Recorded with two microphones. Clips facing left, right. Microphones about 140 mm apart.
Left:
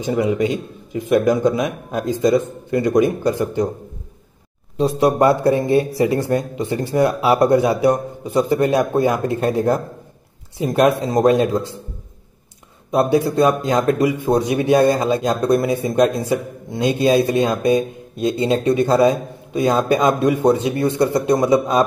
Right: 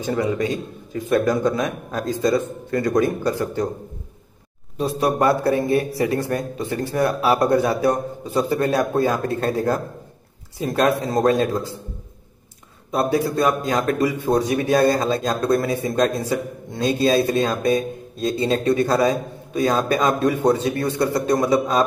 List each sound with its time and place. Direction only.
0.0 s speech: 15° left (ahead or behind)
4.7 s speech: 20° left (ahead or behind)
12.9 s speech: 20° left (ahead or behind)